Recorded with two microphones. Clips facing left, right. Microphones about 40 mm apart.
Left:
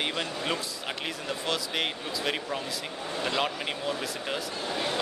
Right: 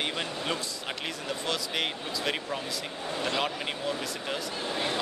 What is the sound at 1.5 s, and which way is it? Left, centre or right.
Speech, centre.